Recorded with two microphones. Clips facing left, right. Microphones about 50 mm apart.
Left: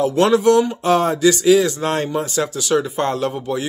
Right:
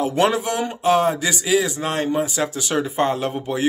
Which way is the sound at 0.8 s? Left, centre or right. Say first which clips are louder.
Right 1 dB; centre.